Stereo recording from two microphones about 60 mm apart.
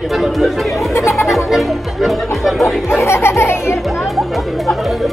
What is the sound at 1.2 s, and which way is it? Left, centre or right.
Music, centre.